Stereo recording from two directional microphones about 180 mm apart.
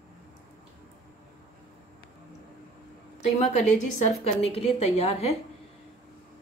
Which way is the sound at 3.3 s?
40° left (ahead or behind).